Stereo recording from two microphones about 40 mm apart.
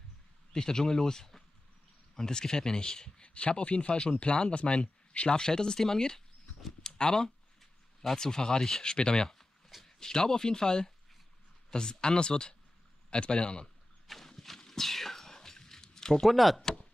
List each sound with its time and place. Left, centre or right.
0.5 s speech: centre
3.3 s speech: left
5.4 s speech: centre
6.8 s a sound: centre
8.2 s speech: centre
14.0 s walk: centre
16.3 s speech: centre